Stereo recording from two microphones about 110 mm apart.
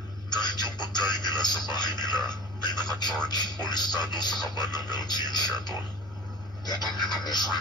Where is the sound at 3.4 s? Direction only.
40° left (ahead or behind).